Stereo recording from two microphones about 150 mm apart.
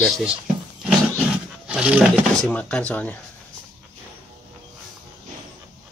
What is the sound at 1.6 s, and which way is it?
Speech, 5° right (ahead or behind).